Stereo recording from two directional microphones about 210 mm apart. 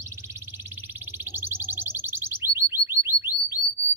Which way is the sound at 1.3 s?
10° right (ahead or behind).